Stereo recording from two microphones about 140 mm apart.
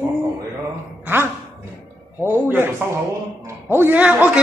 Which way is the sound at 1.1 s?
15° right (ahead or behind).